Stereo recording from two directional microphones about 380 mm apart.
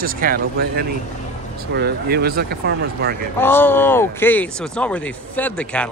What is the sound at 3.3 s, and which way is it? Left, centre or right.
Speech, centre.